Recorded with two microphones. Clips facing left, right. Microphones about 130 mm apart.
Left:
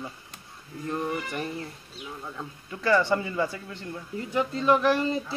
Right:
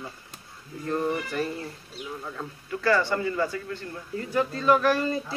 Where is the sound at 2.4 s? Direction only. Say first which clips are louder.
Right 4 dB; 20° left (ahead or behind).